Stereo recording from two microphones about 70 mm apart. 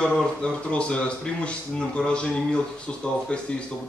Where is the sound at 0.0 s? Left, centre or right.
Centre.